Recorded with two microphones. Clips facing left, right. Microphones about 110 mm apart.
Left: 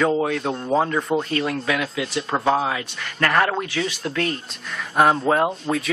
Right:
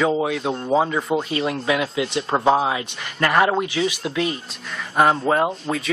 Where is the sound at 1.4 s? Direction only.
20° right (ahead or behind).